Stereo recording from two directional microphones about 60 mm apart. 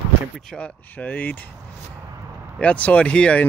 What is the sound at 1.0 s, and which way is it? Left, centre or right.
Speech, left.